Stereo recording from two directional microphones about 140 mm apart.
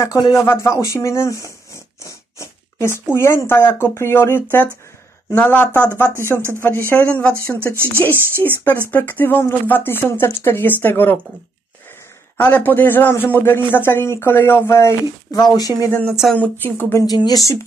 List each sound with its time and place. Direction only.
0.0 s a man's voice: 25° left (ahead or behind)
6.9 s a man's voice: 10° left (ahead or behind)
12.4 s a man's voice: 10° left (ahead or behind)
16.1 s speech: centre (ahead or behind)
16.6 s a man's voice: 15° left (ahead or behind)
17.0 s speech: 30° left (ahead or behind)